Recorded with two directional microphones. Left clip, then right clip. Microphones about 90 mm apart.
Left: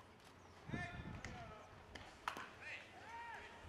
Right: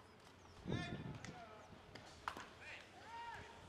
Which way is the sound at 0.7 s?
10° right (ahead or behind).